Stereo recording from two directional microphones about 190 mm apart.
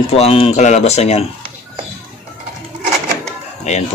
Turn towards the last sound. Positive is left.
turn(degrees=35)  # may be behind; listen again after turning